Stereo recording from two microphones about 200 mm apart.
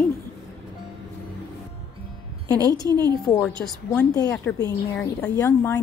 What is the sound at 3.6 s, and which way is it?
Speech, 5° left (ahead or behind).